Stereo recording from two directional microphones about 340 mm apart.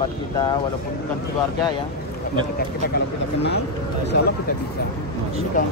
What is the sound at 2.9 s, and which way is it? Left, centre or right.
Speech, left.